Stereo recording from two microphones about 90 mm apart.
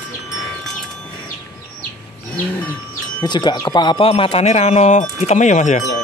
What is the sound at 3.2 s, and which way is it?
Speech, 55° left (ahead or behind).